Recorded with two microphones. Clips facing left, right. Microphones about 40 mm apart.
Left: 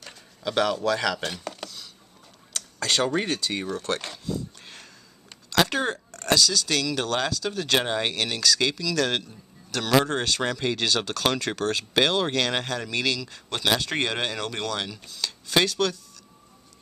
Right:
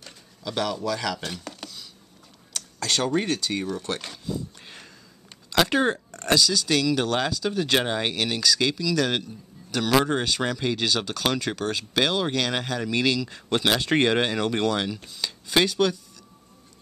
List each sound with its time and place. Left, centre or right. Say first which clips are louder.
0.4 s speech: left 3 dB; centre
2.5 s speech: left 1 dB; centre
3.7 s speech: left 2 dB; centre
4.3 s a sound: even; centre
5.5 s speech: right 2 dB; centre